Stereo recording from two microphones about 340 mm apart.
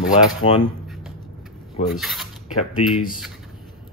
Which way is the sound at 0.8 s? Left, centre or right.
Centre.